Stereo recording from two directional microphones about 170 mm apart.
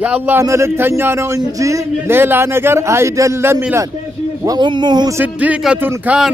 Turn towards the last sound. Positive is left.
turn(degrees=-10)  # may be behind; listen again after turning